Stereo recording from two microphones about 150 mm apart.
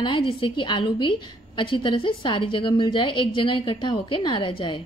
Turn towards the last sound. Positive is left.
turn(degrees=35)  # may be behind; listen again after turning